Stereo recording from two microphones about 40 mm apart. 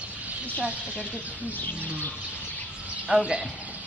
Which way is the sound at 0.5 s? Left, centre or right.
Right.